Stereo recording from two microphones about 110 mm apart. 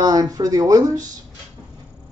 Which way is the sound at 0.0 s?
35° right (ahead or behind).